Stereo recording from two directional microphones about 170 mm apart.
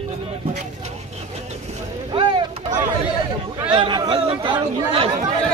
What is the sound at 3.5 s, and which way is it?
Chatter, 30° right (ahead or behind).